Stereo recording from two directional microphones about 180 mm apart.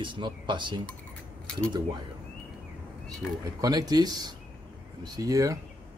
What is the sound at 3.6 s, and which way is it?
Speech, 20° right (ahead or behind).